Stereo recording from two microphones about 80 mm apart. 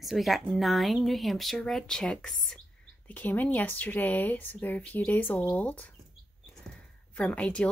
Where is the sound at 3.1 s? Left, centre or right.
Left.